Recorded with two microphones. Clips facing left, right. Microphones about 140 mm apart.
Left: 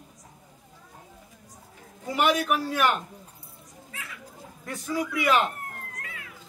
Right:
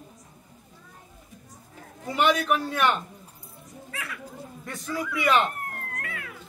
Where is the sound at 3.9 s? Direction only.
70° right (ahead or behind).